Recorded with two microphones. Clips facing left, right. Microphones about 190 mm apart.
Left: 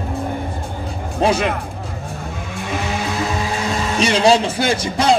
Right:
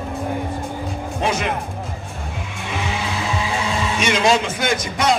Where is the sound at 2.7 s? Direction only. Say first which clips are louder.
Left 2 dB; 40° left (ahead or behind).